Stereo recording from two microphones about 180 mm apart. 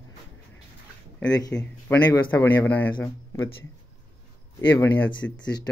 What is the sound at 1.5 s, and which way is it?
Speech, 10° left (ahead or behind).